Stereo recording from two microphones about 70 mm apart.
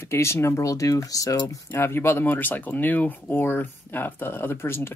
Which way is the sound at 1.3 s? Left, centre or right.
Left.